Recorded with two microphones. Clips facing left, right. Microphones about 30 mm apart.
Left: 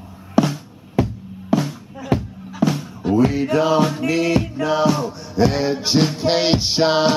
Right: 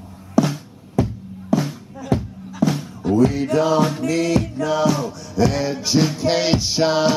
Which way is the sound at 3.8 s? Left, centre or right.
Centre.